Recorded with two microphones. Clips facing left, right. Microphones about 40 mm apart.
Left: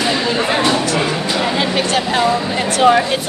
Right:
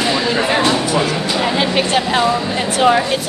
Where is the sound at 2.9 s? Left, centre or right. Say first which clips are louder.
Left 2 dB; right.